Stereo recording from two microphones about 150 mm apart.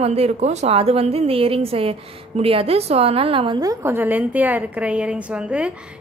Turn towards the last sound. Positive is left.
turn(degrees=-5)  # may be behind; listen again after turning